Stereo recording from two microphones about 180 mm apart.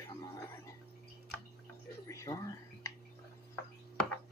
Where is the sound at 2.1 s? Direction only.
15° left (ahead or behind).